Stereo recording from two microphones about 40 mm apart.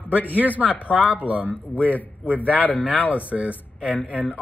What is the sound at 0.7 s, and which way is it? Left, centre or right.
Speech, right.